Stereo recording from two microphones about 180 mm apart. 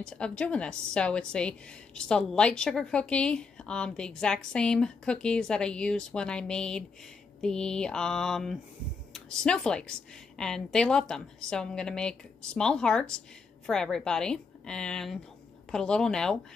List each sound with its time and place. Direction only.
0.0 s a woman's voice: 5° left (ahead or behind)